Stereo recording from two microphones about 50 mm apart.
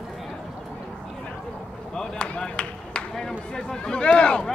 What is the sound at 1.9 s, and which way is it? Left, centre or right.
Chop, centre.